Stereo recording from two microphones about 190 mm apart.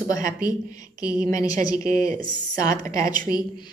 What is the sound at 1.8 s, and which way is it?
Speech, 45° right (ahead or behind).